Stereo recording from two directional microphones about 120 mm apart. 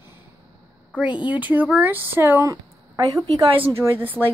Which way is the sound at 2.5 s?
30° right (ahead or behind).